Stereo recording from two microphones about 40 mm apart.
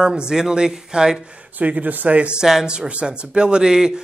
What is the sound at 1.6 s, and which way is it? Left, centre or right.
Speech, right.